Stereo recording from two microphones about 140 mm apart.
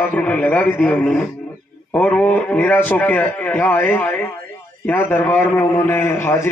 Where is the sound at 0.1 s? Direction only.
10° left (ahead or behind).